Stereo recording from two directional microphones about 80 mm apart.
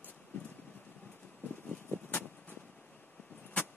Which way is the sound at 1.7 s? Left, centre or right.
Centre.